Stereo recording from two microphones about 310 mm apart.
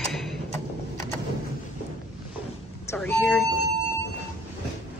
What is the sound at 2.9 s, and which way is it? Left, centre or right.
Speech, centre.